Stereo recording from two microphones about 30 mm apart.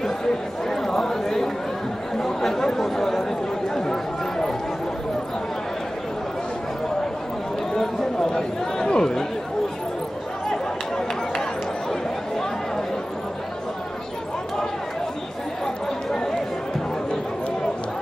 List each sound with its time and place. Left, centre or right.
0.7 s a sound: centre
2.1 s chatter: centre
7.8 s chatter: centre
8.3 s chatter: left
11.9 s chatter: centre
15.6 s chatter: centre